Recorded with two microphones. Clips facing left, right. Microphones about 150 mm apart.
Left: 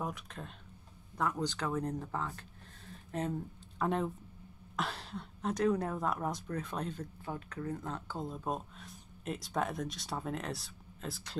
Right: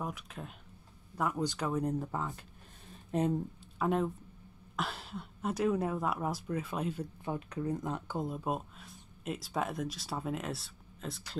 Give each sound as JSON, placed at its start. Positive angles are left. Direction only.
{"t": 0.0, "sound": "speech", "side_deg": -5}
{"t": 3.7, "sound": "speech", "side_deg": -5}
{"t": 7.2, "sound": "speech", "side_deg": -20}